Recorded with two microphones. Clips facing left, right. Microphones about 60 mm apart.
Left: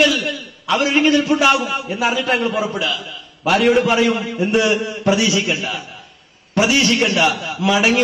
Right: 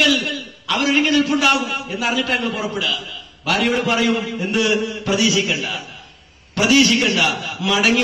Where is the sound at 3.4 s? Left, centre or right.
Centre.